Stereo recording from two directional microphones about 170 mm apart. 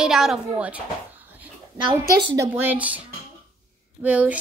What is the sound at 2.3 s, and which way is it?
Speech, 15° right (ahead or behind).